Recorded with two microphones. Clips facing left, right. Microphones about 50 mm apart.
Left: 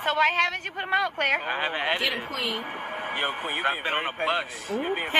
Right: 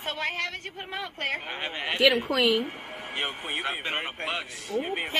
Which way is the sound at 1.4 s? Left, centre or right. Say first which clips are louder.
Left 6 dB; left.